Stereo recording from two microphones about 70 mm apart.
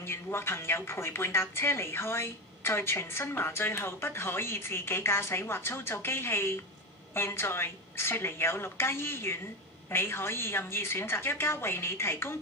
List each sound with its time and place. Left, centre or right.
0.0 s speech: left